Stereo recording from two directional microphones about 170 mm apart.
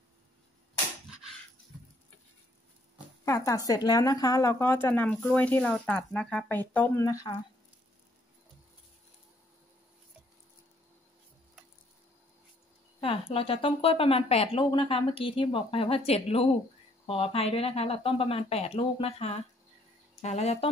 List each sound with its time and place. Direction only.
3.3 s speech: 20° left (ahead or behind)
7.1 s speech: 20° left (ahead or behind)
13.0 s speech: 35° left (ahead or behind)